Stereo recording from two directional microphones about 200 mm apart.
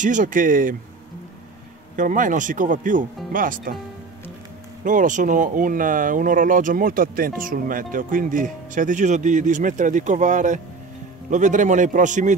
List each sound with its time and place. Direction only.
0.0 s speech: 40° right (ahead or behind)
2.0 s speech: 40° right (ahead or behind)
4.8 s speech: 40° right (ahead or behind)